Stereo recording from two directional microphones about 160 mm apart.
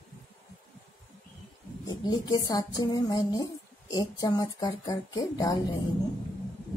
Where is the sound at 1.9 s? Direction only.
25° left (ahead or behind).